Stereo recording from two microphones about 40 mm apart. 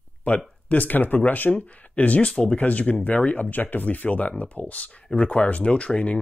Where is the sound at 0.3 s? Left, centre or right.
Left.